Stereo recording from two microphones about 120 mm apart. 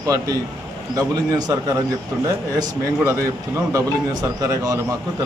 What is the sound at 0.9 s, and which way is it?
A man's voice, 30° right (ahead or behind).